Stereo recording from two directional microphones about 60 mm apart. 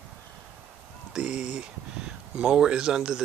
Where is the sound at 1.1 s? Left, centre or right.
Centre.